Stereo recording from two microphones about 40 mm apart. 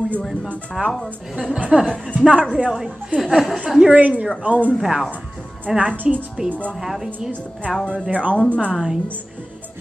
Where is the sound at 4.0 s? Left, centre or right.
Right.